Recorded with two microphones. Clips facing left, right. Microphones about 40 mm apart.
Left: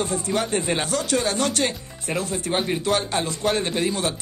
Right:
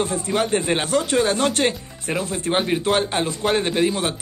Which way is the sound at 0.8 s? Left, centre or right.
Right.